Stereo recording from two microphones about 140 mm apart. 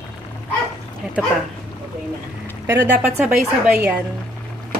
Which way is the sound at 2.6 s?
15° right (ahead or behind).